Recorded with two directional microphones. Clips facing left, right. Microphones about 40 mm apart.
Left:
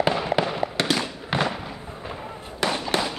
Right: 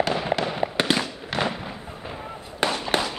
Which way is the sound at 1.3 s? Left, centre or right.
Centre.